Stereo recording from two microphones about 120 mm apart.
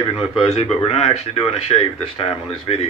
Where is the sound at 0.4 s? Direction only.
55° left (ahead or behind).